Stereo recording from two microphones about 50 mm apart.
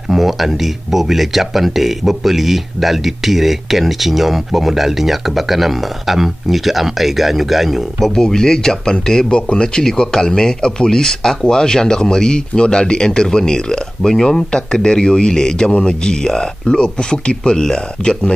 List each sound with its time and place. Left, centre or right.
0.1 s speech: centre
8.1 s speech: centre